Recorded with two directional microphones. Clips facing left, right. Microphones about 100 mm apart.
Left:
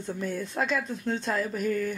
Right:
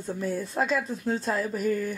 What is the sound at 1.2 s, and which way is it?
Speech, 5° right (ahead or behind).